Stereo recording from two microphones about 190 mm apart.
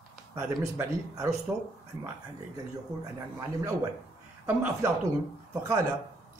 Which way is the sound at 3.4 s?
15° right (ahead or behind).